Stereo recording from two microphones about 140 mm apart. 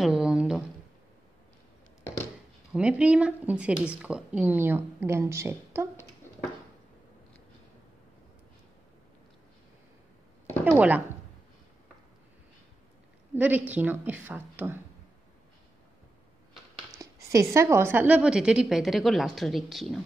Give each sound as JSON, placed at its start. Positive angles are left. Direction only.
{"t": 0.0, "sound": "a sound", "side_deg": -5}
{"t": 2.7, "sound": "speech", "side_deg": -10}
{"t": 10.6, "sound": "speech", "side_deg": -10}
{"t": 13.3, "sound": "speech", "side_deg": -10}
{"t": 16.9, "sound": "speech", "side_deg": -25}